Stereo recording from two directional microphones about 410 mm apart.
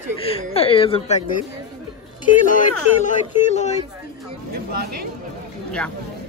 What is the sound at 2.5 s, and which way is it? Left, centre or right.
Speech, centre.